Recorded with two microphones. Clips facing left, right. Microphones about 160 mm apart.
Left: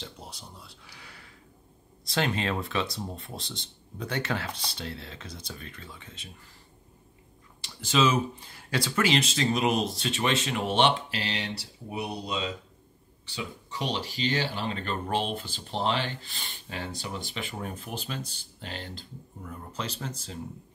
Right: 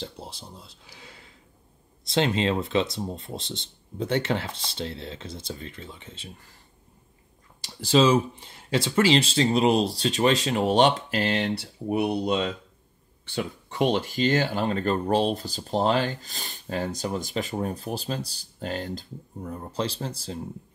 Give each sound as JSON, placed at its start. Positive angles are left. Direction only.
{"t": 0.0, "sound": "speech", "side_deg": -30}
{"t": 7.6, "sound": "speech", "side_deg": -35}